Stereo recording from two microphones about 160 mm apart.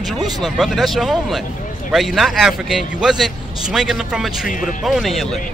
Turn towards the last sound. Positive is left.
turn(degrees=0)  # may be behind; listen again after turning